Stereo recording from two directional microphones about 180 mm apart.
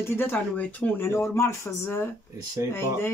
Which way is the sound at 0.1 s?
10° left (ahead or behind).